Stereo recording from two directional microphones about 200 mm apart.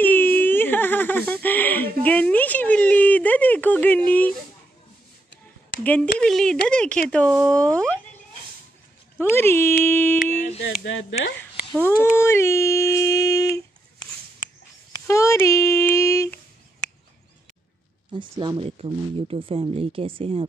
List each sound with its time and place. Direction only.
0.0 s whimper: 10° left (ahead or behind)
2.0 s a sound: 5° left (ahead or behind)
6.1 s speech: 5° left (ahead or behind)
9.2 s speech: 10° left (ahead or behind)
10.8 s speech: 65° left (ahead or behind)
11.7 s speech: 10° left (ahead or behind)
14.9 s speech: 15° left (ahead or behind)
18.1 s speech: 25° right (ahead or behind)